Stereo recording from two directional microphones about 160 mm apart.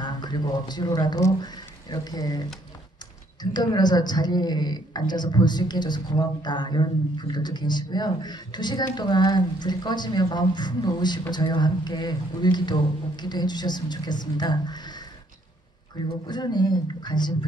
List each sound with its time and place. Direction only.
0.0 s speech: 25° left (ahead or behind)
3.5 s a woman's voice: 25° left (ahead or behind)
16.3 s a woman's voice: 25° left (ahead or behind)